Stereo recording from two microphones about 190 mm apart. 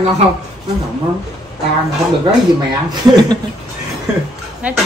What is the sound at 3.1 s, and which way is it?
Speech, 20° right (ahead or behind).